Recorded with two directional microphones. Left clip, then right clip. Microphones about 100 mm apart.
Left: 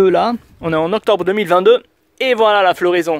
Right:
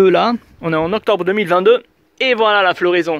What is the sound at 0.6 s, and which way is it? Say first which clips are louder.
Speech: left 3 dB; 45° left (ahead or behind).